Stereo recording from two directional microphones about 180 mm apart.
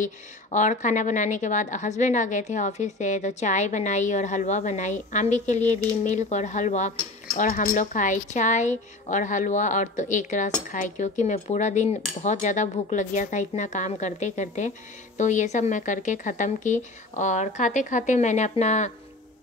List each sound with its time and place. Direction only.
0.0 s a woman's voice: 40° left (ahead or behind)